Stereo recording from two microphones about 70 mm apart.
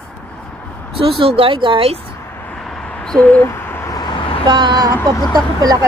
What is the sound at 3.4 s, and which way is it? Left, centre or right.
Owl, left.